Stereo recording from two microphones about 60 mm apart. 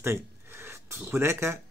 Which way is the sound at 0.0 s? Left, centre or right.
Right.